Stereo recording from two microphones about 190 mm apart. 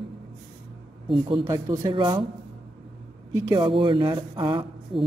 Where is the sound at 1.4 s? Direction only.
15° right (ahead or behind).